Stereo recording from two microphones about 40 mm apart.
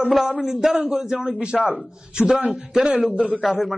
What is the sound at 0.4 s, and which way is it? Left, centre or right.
A man's voice, centre.